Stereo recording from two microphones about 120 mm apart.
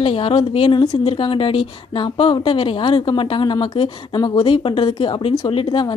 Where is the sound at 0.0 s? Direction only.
45° left (ahead or behind).